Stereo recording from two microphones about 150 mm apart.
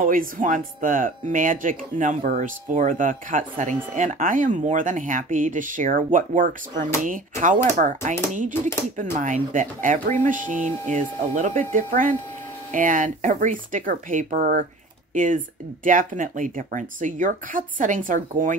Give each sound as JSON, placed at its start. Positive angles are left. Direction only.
{"t": 0.0, "sound": "speech", "side_deg": -65}
{"t": 9.2, "sound": "speech", "side_deg": -60}